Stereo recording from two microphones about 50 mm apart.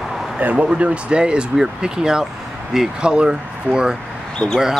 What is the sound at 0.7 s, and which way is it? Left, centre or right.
Speech, right.